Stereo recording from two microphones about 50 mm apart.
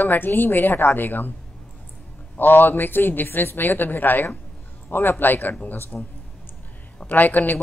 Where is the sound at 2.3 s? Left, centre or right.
Left.